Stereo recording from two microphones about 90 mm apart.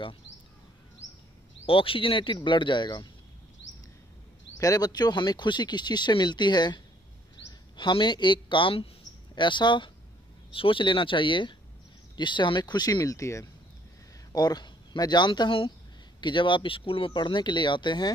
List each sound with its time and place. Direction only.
1.7 s speech: 80° left; by 3.1 s 55° left (ahead or behind)
4.6 s speech: 40° left (ahead or behind); by 8.8 s 70° left (ahead or behind)
9.3 s speech: 60° left (ahead or behind)
10.5 s speech: 75° left (ahead or behind); by 13.5 s 35° left (ahead or behind)
14.3 s speech: 50° left (ahead or behind)